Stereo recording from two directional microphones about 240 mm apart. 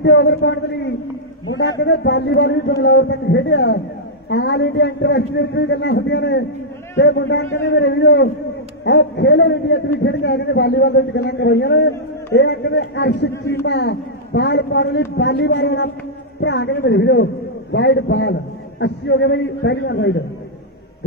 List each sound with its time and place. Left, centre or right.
0.0 s a man's voice: left